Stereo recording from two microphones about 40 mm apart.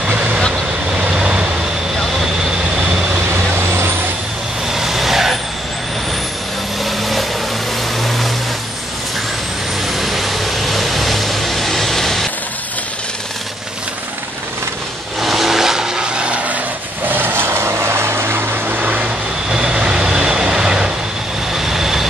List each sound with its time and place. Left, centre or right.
0.1 s vehicle: right
3.5 s vehicle: right
4.6 s vehicle: centre
6.8 s vehicle: centre
9.9 s vehicle: centre
15.1 s vehicle: centre; by 16.5 s right
17.1 s vehicle: right
19.5 s vehicle: right